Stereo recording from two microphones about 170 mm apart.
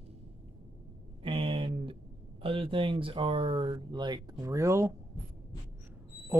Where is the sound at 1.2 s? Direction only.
30° right (ahead or behind).